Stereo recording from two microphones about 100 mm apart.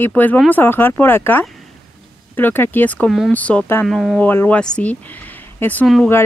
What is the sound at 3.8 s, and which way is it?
Speech, 5° left (ahead or behind).